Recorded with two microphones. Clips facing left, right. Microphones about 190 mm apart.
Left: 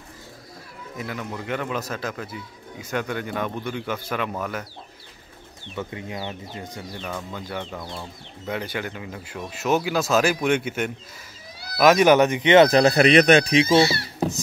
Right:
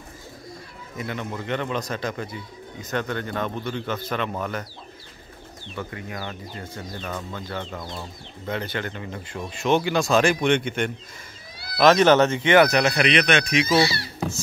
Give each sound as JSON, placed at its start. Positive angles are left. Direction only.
{"t": 0.9, "sound": "speech", "side_deg": 5}
{"t": 5.8, "sound": "speech", "side_deg": 20}